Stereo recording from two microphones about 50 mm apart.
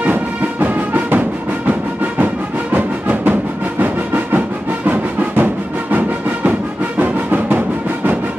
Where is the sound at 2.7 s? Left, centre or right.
Right.